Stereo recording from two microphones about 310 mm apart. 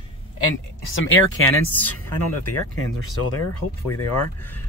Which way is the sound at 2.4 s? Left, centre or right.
Left.